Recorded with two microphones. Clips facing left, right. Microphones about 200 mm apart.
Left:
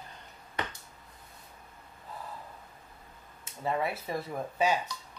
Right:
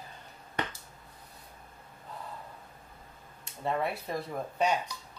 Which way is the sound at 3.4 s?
Centre (ahead or behind).